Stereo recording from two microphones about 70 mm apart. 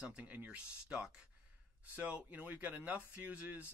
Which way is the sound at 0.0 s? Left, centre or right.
Centre.